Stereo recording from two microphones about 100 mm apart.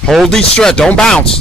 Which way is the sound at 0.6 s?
10° left (ahead or behind).